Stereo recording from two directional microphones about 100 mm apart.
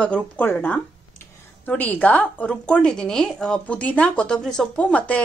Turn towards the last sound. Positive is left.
turn(degrees=15)  # may be behind; listen again after turning